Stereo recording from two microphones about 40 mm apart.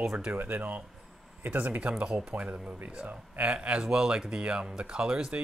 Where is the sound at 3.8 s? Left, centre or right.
Centre.